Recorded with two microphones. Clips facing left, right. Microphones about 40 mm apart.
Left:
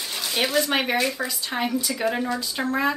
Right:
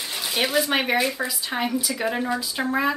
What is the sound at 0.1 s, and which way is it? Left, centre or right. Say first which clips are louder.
Speech: even; centre.